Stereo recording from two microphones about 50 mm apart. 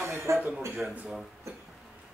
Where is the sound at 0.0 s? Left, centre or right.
Right.